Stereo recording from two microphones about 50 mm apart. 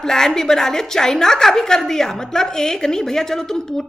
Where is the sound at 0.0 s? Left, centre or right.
Centre.